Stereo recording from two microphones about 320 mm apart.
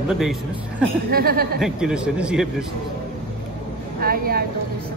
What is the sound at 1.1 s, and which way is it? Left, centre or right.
Speech, right.